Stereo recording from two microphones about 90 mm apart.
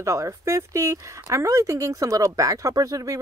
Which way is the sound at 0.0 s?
35° right (ahead or behind).